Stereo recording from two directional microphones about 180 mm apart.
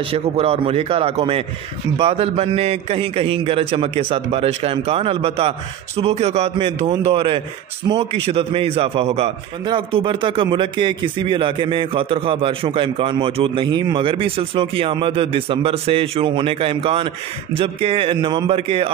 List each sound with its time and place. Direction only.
0.1 s a man's voice: 35° right (ahead or behind)